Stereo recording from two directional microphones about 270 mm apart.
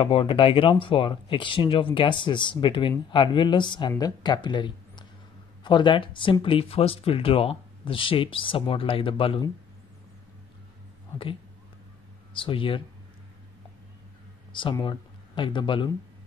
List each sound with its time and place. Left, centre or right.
0.0 s speech: centre
12.4 s speech: centre
14.5 s speech: centre